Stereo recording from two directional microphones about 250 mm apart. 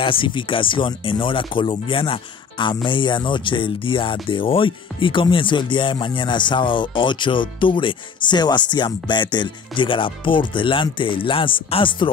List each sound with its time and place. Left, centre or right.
0.0 s speech: left